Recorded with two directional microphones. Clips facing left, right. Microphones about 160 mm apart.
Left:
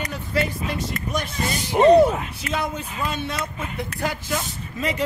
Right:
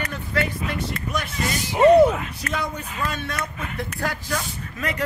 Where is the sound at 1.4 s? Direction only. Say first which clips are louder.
Even; 30° left (ahead or behind).